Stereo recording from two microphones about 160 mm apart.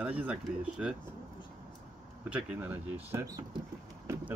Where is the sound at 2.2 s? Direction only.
10° right (ahead or behind).